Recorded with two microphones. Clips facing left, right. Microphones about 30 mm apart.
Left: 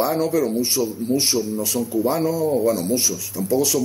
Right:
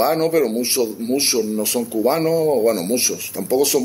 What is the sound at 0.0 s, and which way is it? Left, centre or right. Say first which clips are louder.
Speech: right 3 dB; right.